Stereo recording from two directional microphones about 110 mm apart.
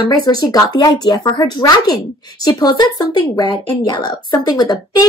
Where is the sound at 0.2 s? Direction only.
35° left (ahead or behind).